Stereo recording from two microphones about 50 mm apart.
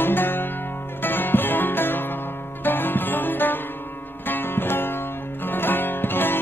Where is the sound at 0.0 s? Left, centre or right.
Left.